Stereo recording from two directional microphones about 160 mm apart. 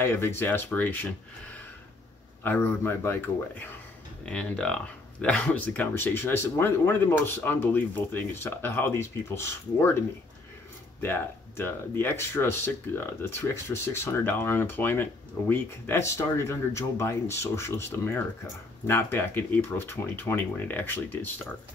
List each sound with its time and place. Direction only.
0.0 s speech: 15° left (ahead or behind)
2.4 s speech: 15° left (ahead or behind)